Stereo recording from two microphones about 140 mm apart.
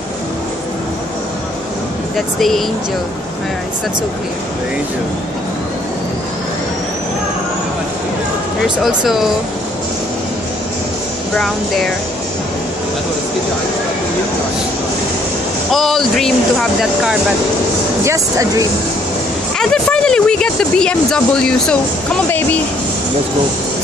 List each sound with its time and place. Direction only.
2.1 s speech: centre (ahead or behind)
8.6 s speech: centre (ahead or behind)
11.3 s speech: centre (ahead or behind)
15.7 s speech: centre (ahead or behind)
18.0 s speech: 25° right (ahead or behind)
19.6 s speech: 5° left (ahead or behind)